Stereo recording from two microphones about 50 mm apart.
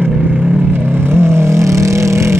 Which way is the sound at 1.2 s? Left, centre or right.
Right.